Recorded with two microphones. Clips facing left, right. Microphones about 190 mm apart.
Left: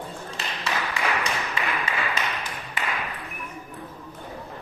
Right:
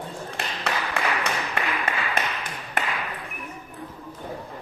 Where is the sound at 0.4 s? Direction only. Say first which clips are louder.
Right 1 dB; 60° right (ahead or behind).